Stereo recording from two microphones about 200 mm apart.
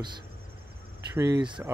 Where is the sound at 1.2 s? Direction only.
20° right (ahead or behind).